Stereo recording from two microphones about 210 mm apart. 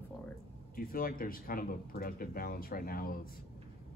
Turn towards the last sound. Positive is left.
turn(degrees=45)  # may be behind; listen again after turning